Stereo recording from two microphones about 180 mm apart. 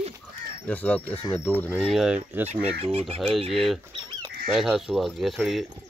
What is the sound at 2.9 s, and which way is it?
Speech, 30° right (ahead or behind).